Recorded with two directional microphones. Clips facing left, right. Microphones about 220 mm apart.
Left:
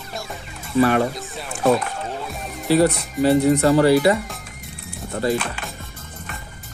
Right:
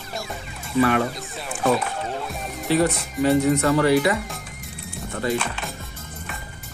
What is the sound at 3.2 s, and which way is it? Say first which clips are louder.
Speech: left 3 dB; 35° left (ahead or behind).